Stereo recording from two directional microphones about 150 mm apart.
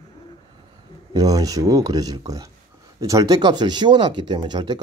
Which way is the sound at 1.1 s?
25° right (ahead or behind).